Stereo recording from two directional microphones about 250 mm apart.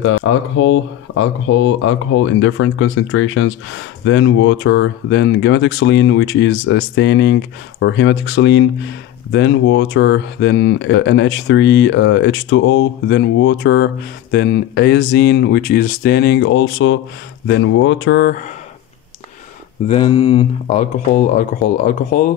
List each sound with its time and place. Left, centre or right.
0.0 s speech: left
19.9 s speech: left